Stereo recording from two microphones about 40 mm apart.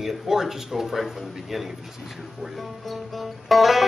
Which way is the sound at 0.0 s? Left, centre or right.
Centre.